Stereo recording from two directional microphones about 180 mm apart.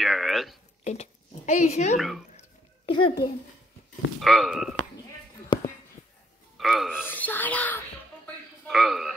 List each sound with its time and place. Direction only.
0.0 s a sound: centre (ahead or behind)
0.8 s speech: 40° left (ahead or behind)
2.0 s speech: centre (ahead or behind)
2.9 s speech: 30° left (ahead or behind)
4.2 s speech: centre (ahead or behind)
6.6 s speech: centre (ahead or behind)
7.1 s speech: 10° left (ahead or behind)